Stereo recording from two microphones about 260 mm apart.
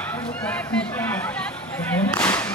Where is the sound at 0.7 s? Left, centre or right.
Centre.